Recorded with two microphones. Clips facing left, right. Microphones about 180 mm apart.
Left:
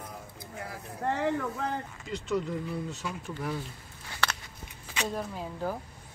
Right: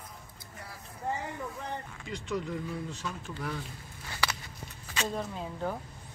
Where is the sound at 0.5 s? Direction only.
85° left.